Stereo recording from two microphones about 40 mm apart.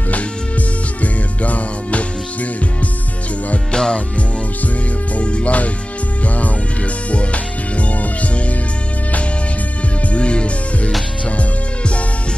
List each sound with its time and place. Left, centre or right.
0.1 s music: left
3.7 s music: centre
5.1 s music: left
7.7 s music: left
10.1 s music: left